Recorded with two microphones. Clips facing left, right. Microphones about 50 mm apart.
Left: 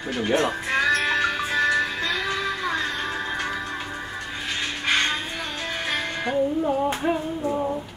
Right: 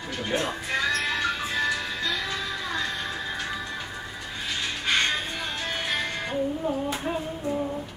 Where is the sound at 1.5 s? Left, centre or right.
Left.